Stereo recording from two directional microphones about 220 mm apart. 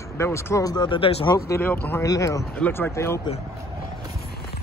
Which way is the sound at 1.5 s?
10° left (ahead or behind).